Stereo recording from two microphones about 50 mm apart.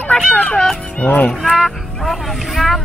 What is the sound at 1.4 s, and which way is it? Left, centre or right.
Vehicle, centre.